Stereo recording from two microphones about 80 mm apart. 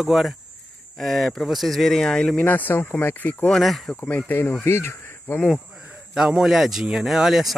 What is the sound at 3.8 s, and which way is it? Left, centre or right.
Speech, centre.